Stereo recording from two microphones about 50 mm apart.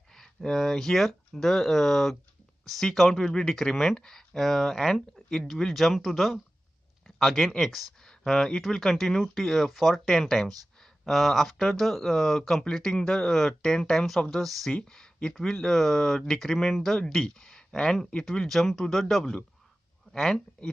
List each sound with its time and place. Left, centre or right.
0.1 s speech: centre
13.9 s speech: centre
14.9 s speech: centre
18.5 s speech: centre